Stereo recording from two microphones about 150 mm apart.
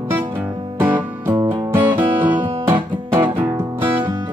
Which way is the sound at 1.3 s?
30° right (ahead or behind).